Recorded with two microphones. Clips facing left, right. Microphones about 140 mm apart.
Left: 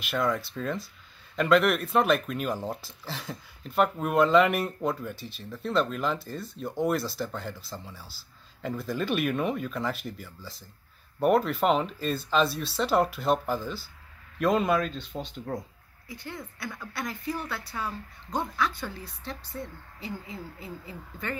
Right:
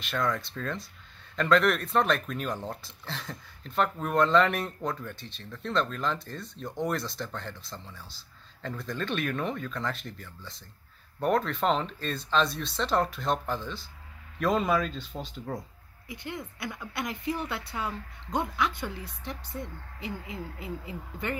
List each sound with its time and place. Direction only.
0.0 s speech: 5° left (ahead or behind)
16.1 s speech: 20° right (ahead or behind)